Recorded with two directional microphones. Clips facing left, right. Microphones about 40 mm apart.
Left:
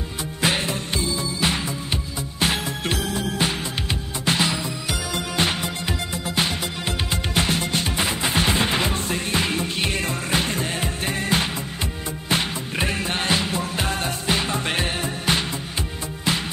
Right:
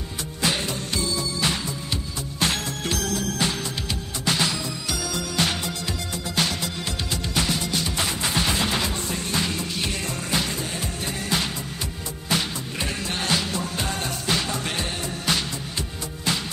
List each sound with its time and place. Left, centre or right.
0.4 s music: left
7.2 s music: left
8.0 s music: left